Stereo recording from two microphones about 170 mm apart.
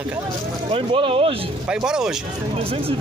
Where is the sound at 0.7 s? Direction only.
30° right (ahead or behind).